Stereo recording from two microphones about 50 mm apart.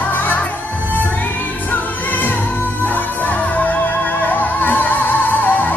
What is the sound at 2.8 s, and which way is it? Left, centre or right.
Music, left.